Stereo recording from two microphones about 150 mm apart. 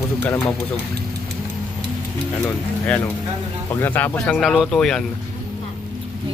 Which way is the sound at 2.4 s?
10° left (ahead or behind).